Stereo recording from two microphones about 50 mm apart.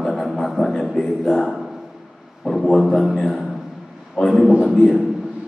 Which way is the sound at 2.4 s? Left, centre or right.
Centre.